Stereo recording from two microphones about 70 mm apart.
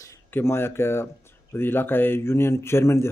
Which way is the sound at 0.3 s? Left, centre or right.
Left.